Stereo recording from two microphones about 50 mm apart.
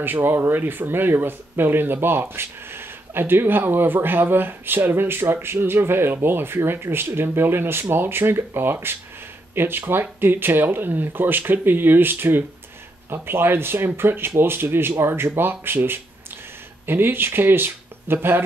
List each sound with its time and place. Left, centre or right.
0.0 s speech: right